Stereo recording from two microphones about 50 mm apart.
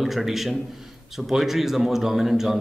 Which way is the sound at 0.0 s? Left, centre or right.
Centre.